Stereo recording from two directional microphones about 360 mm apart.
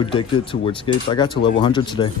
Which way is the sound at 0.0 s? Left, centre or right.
Centre.